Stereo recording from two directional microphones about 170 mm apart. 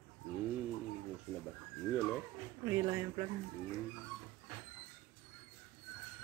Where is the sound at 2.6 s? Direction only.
15° right (ahead or behind).